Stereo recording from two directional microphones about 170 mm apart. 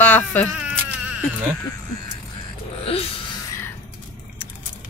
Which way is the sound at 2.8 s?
35° left (ahead or behind).